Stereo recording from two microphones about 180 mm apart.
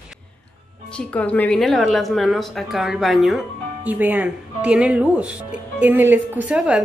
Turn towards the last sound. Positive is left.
turn(degrees=-5)  # may be behind; listen again after turning